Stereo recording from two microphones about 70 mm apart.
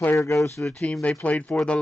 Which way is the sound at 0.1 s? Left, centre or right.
Left.